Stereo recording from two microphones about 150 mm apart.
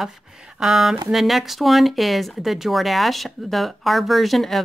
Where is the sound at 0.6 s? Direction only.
Centre (ahead or behind).